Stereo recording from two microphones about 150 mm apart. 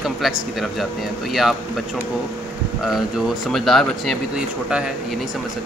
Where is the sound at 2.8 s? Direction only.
Centre (ahead or behind).